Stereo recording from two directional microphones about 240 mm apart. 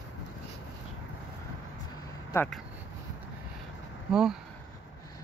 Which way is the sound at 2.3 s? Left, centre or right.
Centre.